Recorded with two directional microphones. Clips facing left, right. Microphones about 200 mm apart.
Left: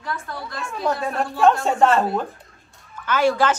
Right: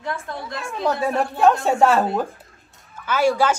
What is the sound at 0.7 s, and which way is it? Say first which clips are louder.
A woman's voice: right 2 dB; centre (ahead or behind).